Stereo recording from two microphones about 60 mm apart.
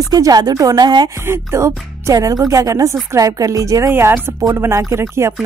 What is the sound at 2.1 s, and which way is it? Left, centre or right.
A woman's voice, right.